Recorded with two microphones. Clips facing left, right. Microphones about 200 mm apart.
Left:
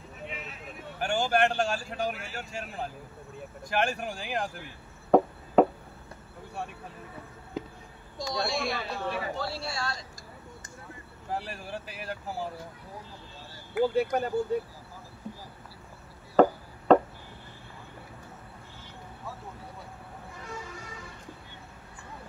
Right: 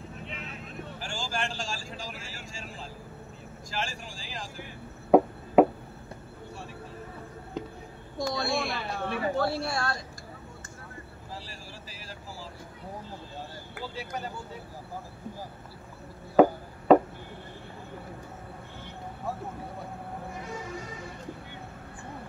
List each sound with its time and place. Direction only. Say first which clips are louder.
0.9 s speech: left 10 dB; 60° left (ahead or behind)
5.1 s a sound: right 2 dB; 10° right (ahead or behind)
7.6 s basketball bounce: even; 5° left (ahead or behind)
8.2 s a woman's voice: right 1 dB; 55° right (ahead or behind)
11.2 s speech: left 10 dB; 60° left (ahead or behind)
13.7 s speech: left 13 dB; 55° left (ahead or behind)
16.3 s music: right 1 dB; 5° right (ahead or behind)